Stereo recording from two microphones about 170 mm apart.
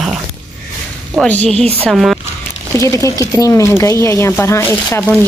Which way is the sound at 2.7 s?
20° left (ahead or behind).